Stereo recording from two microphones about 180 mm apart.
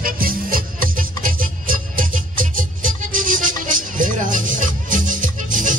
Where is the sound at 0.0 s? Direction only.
50° right (ahead or behind).